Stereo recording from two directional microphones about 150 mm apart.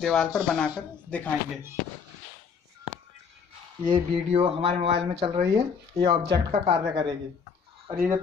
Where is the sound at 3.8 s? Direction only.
40° right (ahead or behind).